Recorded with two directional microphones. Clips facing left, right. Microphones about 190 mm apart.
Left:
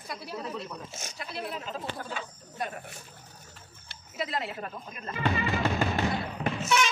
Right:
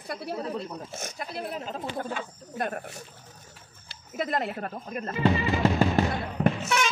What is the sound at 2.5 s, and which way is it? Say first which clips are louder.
Speech: right 5 dB; 55° right (ahead or behind).